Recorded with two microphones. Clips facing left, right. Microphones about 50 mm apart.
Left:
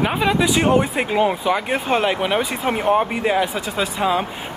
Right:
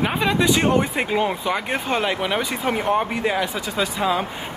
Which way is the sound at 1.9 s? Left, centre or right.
Centre.